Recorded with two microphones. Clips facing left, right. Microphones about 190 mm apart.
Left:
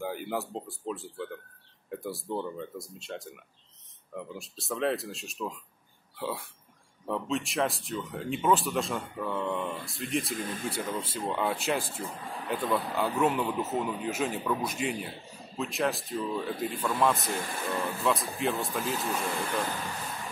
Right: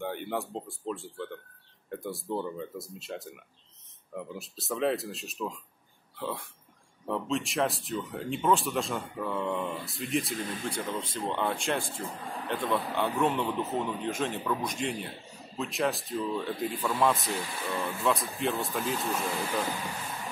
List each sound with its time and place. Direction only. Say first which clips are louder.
0.0 s speech: even; 5° left (ahead or behind)
17.4 s speech: left 1 dB; 50° left (ahead or behind)
18.0 s speech: even; centre (ahead or behind)